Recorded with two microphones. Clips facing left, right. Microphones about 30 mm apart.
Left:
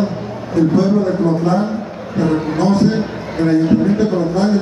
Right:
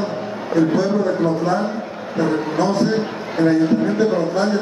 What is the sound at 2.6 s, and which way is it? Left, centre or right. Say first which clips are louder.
A man's voice: left 4 dB; centre.